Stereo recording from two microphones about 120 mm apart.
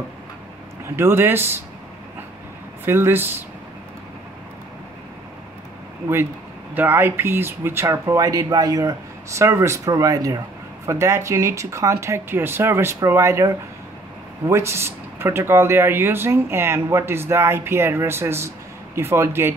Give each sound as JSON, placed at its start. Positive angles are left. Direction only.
{"t": 0.9, "sound": "speech", "side_deg": -20}
{"t": 2.8, "sound": "speech", "side_deg": -20}
{"t": 6.7, "sound": "speech", "side_deg": -15}